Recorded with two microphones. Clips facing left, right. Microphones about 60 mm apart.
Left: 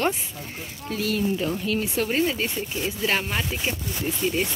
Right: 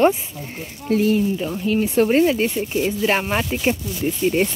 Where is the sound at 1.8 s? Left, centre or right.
Right.